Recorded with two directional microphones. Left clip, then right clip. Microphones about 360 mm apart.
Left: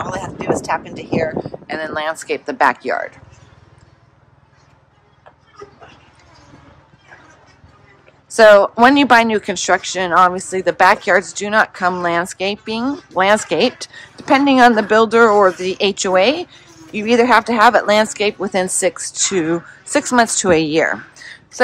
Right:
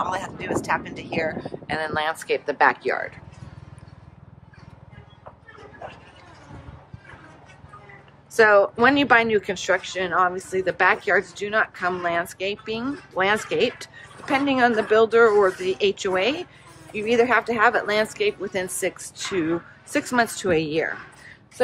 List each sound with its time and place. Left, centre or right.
0.0 s speech: centre
8.4 s a woman's voice: centre